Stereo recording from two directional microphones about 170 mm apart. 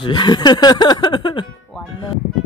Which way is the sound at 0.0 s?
25° left (ahead or behind).